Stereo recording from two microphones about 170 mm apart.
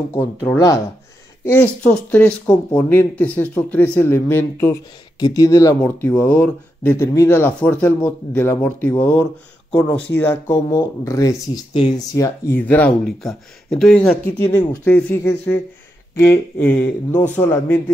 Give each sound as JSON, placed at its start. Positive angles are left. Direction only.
{"t": 0.1, "sound": "speech", "side_deg": 15}
{"t": 10.5, "sound": "speech", "side_deg": 20}